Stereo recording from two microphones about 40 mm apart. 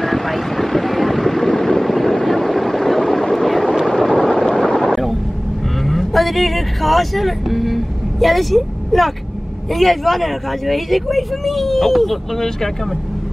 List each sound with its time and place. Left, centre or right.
0.0 s vehicle: centre
3.8 s a sound: centre
5.9 s speech: centre